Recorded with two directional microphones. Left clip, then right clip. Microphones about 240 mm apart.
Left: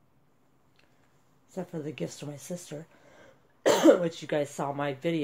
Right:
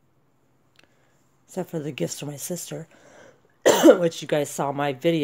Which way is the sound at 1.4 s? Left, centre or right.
Right.